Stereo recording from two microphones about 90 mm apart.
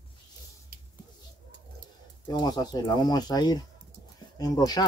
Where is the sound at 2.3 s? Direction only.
50° left (ahead or behind).